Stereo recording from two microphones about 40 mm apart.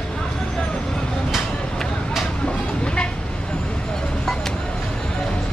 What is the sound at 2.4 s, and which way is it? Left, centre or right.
Vehicle, left.